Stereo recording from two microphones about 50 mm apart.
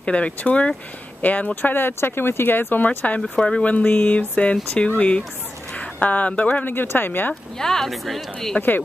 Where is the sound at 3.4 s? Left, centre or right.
Centre.